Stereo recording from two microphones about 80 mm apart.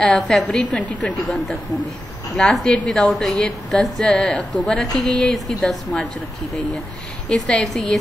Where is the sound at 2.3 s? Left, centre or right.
Centre.